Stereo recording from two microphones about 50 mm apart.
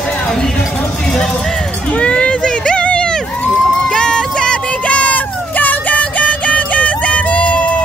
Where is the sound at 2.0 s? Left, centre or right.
Left.